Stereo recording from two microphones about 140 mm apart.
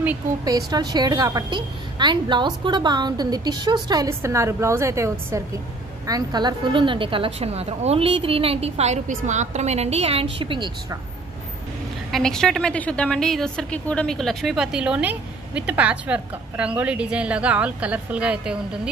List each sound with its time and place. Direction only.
0.5 s a woman's voice: 25° right (ahead or behind)
12.1 s a woman's voice: 5° left (ahead or behind)